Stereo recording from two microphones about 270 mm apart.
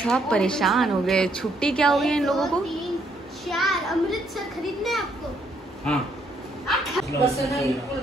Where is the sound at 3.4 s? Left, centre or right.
Centre.